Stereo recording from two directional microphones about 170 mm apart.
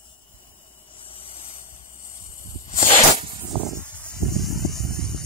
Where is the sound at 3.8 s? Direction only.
10° left (ahead or behind).